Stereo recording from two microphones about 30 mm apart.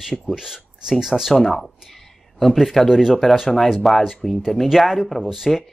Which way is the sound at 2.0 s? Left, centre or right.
Centre.